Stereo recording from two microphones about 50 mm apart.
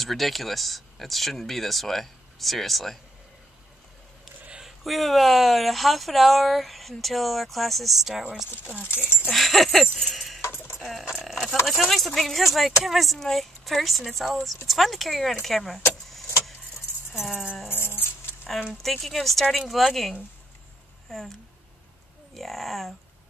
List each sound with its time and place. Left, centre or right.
0.0 s speech: centre
4.6 s speech: centre
9.3 s a sound: centre
10.8 s dog: centre
11.1 s a sound: centre
11.6 s speech: centre
17.2 s speech: centre
17.6 s dog: left
18.5 s speech: centre